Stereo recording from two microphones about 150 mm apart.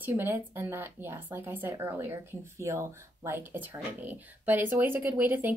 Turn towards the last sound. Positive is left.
turn(degrees=-15)  # may be behind; listen again after turning